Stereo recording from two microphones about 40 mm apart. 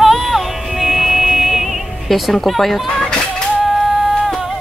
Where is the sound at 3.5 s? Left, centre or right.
Centre.